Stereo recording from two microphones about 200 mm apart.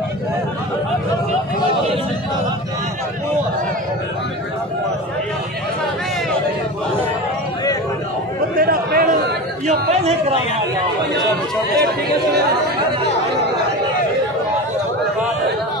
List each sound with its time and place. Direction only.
8.5 s chatter: 45° right (ahead or behind)